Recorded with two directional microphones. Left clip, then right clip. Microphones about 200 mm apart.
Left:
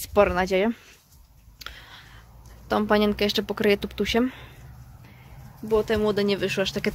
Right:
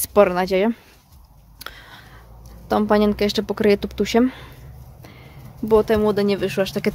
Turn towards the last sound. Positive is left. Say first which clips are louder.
# right 4 dB
turn(degrees=-5)  # may be behind; listen again after turning